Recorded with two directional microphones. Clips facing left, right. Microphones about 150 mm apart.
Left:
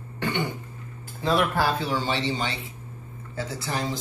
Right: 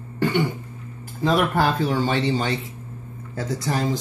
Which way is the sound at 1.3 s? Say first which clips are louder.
Right 3 dB; 50° right (ahead or behind).